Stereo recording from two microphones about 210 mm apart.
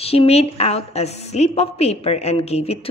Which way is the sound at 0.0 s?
30° left (ahead or behind).